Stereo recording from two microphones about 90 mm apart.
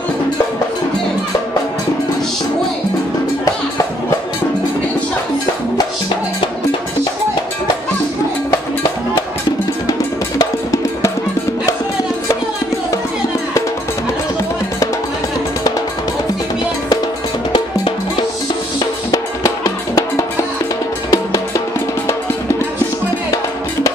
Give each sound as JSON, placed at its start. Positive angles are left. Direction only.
{"t": 10.4, "sound": "music", "side_deg": 40}
{"t": 19.1, "sound": "music", "side_deg": 40}